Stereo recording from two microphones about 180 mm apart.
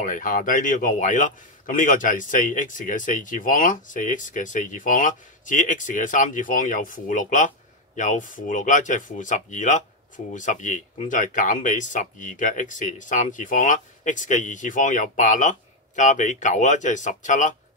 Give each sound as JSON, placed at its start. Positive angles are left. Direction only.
{"t": 0.0, "sound": "a man's voice", "side_deg": 50}